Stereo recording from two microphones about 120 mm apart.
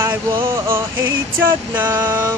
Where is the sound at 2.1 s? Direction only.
35° right (ahead or behind).